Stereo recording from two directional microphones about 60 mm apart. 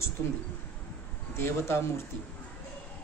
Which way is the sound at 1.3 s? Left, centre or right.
Left.